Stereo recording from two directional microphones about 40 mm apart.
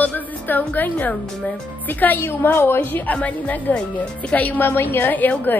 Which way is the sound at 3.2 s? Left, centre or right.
Left.